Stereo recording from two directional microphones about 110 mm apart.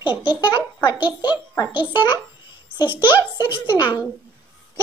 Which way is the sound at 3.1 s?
45° left (ahead or behind).